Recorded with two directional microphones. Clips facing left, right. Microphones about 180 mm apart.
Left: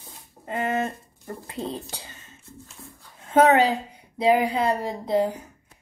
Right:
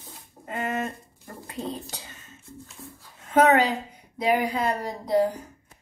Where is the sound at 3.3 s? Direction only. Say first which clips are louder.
Left 2 dB; 30° left (ahead or behind).